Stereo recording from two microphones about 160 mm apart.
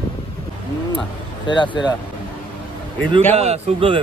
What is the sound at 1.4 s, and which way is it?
Speech, 30° left (ahead or behind).